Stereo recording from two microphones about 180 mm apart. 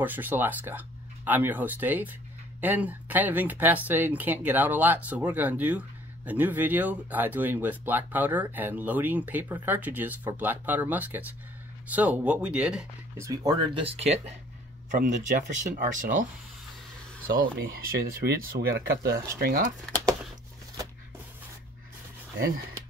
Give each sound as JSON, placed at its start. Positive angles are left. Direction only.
{"t": 0.0, "sound": "speech", "side_deg": -10}
{"t": 13.2, "sound": "speech", "side_deg": -20}
{"t": 17.4, "sound": "speech", "side_deg": -60}
{"t": 19.4, "sound": "speech", "side_deg": -50}